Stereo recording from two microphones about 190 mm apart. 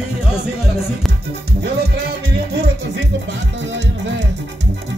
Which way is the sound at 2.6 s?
65° right (ahead or behind).